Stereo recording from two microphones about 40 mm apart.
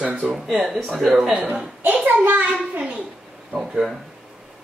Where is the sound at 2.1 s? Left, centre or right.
Right.